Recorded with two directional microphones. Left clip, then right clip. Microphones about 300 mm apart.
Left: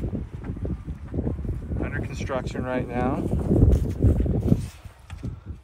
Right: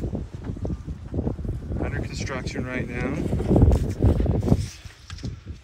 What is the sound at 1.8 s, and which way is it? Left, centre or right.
Speech, centre.